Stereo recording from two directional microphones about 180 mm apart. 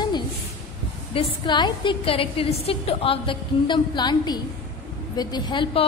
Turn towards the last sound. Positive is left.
turn(degrees=25)  # may be behind; listen again after turning